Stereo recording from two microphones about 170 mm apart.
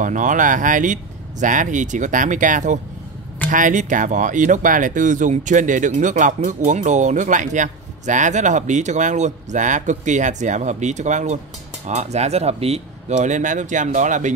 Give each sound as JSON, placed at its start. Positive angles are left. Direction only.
{"t": 0.0, "sound": "speech", "side_deg": -50}